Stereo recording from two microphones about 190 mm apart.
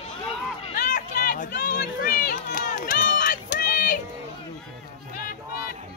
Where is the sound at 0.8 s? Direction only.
40° left (ahead or behind).